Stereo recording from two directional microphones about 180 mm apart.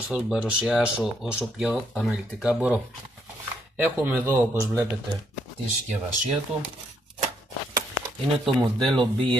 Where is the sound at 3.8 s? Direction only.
15° right (ahead or behind).